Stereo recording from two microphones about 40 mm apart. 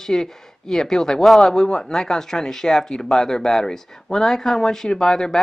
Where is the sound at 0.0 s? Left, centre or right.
Centre.